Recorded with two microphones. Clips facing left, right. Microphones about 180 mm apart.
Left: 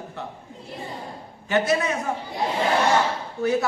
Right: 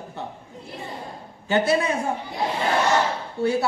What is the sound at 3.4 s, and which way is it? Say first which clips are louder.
Speech: even; 30° right (ahead or behind).